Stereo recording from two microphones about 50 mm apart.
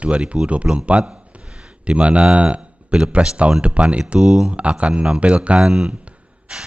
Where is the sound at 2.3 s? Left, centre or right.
Right.